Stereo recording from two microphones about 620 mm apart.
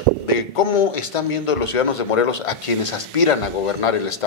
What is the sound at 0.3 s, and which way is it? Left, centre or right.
A man's voice, left.